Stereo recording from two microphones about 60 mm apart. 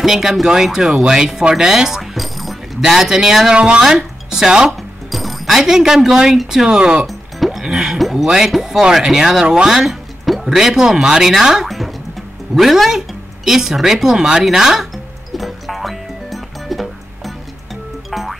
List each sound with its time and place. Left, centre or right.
0.0 s speech: centre
7.1 s music: centre
7.6 s speech: centre
15.3 s music: centre